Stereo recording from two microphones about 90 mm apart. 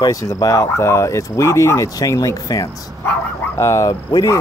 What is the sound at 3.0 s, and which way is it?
Bow-wow, 20° left (ahead or behind).